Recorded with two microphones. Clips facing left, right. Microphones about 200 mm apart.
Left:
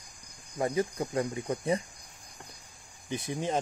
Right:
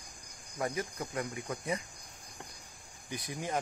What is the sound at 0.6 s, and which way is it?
Speech, 25° left (ahead or behind).